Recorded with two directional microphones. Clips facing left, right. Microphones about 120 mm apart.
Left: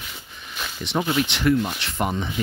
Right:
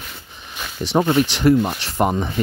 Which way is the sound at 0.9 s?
35° right (ahead or behind).